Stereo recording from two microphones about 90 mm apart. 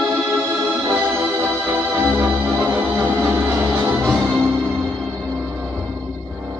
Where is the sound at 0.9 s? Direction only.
20° right (ahead or behind).